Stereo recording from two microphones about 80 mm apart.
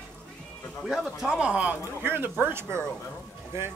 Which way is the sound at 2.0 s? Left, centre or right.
Right.